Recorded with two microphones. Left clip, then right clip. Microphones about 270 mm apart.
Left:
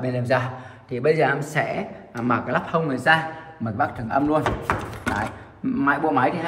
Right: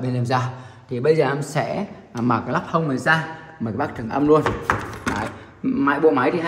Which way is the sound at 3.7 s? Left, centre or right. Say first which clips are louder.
Left 2 dB; centre.